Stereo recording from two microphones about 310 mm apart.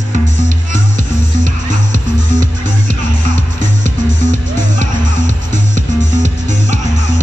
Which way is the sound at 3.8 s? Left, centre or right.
Right.